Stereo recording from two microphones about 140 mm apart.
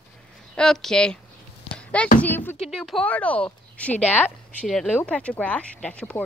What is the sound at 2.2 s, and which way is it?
Speech, 15° left (ahead or behind).